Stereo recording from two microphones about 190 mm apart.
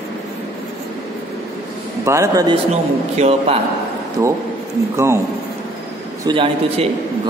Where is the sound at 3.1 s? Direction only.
35° right (ahead or behind).